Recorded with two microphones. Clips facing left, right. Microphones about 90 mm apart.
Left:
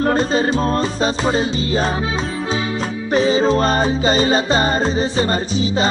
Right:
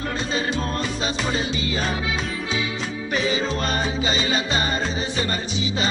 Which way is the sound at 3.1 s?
35° left (ahead or behind).